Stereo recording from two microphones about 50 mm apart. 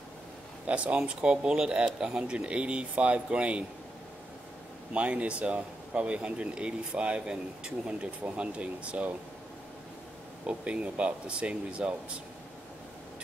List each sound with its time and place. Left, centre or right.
0.7 s speech: right
4.9 s speech: right
10.4 s speech: right